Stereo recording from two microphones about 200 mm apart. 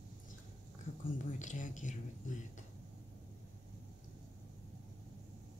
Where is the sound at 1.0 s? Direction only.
40° left (ahead or behind).